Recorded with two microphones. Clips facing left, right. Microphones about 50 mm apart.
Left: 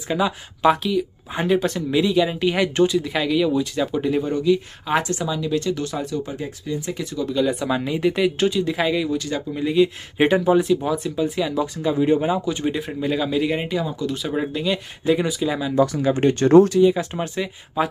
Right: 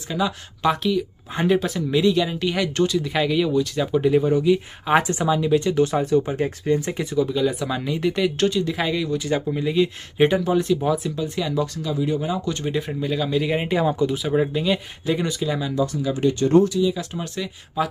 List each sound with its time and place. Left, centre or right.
0.1 s speech: centre
3.0 s speech: centre; by 7.0 s right
7.0 s speech: centre
7.2 s speech: centre
10.1 s speech: centre
11.8 s speech: left
12.4 s speech: centre
13.5 s speech: centre
16.0 s speech: left
16.9 s speech: left